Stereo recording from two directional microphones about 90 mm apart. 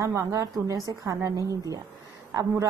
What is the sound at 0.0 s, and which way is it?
A woman's voice, 35° right (ahead or behind).